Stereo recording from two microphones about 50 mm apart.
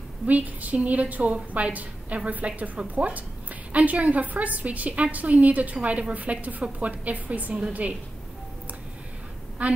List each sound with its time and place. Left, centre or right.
0.3 s a woman's voice: right
9.6 s a woman's voice: right